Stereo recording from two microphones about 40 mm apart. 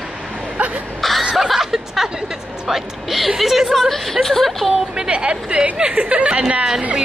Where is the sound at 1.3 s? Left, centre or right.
Centre.